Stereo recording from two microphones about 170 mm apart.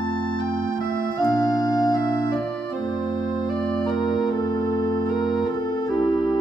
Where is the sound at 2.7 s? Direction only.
25° left (ahead or behind).